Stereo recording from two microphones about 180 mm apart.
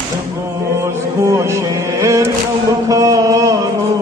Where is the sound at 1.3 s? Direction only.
15° right (ahead or behind).